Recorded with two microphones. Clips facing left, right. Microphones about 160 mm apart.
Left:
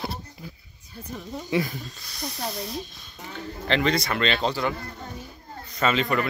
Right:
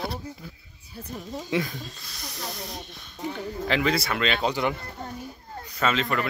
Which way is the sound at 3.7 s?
5° right (ahead or behind).